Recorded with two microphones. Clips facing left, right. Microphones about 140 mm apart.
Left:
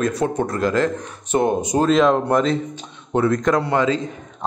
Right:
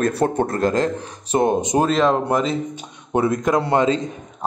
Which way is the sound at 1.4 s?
20° right (ahead or behind).